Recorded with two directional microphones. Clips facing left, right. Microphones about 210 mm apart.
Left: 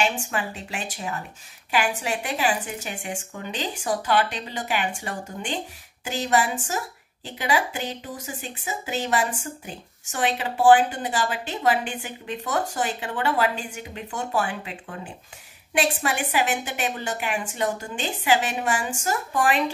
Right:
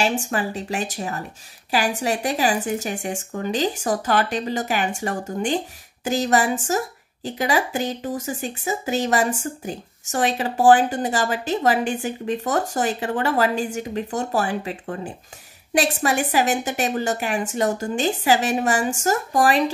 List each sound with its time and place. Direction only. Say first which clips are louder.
0.0 s a woman's voice: right 4 dB; 40° right (ahead or behind)